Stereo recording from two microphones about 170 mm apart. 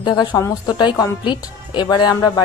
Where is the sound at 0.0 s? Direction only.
25° left (ahead or behind).